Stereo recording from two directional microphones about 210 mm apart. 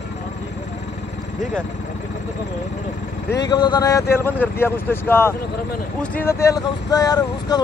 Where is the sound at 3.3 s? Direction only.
20° left (ahead or behind).